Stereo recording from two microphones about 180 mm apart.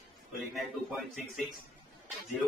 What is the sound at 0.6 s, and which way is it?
A man's voice, centre (ahead or behind).